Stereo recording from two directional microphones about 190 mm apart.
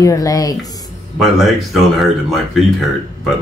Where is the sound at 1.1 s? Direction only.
Centre (ahead or behind).